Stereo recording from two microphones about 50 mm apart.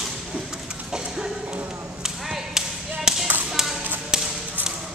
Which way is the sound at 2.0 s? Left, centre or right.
Centre.